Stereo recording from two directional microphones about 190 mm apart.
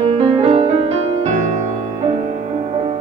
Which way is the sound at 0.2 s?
30° right (ahead or behind).